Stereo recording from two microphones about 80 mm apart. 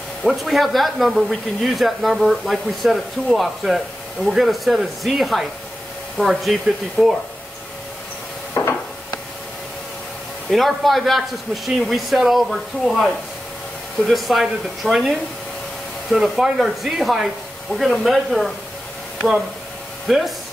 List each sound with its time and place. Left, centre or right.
0.2 s speech: centre
8.6 s a sound: left
10.5 s speech: centre
20.1 s speech: centre